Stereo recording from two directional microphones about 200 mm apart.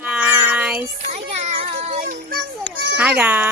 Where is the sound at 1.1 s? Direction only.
30° right (ahead or behind).